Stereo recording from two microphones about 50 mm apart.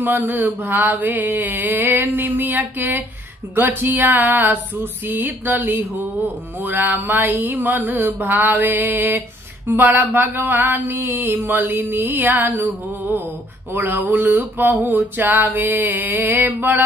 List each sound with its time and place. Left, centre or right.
0.0 s mantra: right
13.7 s mantra: right